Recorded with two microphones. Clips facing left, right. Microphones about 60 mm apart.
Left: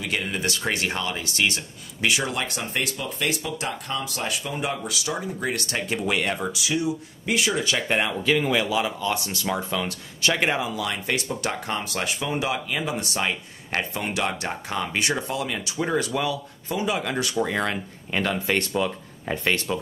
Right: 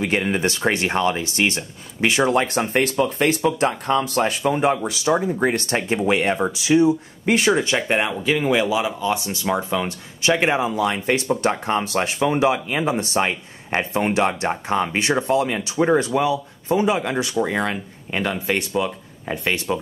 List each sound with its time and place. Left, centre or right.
0.0 s speech: right
7.9 s speech: centre